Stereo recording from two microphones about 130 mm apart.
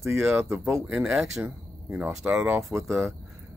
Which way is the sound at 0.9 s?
5° right (ahead or behind).